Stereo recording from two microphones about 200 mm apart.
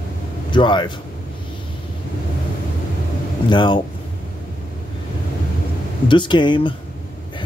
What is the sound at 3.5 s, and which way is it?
Speech, 25° left (ahead or behind).